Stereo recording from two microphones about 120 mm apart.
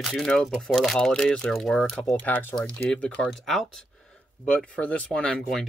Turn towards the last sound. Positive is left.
turn(degrees=5)  # may be behind; listen again after turning